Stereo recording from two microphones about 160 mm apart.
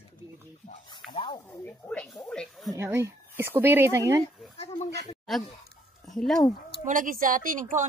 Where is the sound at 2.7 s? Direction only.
15° right (ahead or behind).